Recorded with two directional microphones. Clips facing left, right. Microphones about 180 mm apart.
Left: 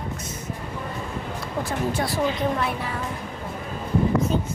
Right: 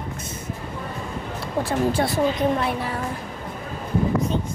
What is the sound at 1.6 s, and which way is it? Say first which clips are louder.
Speech: right 4 dB; 30° right (ahead or behind).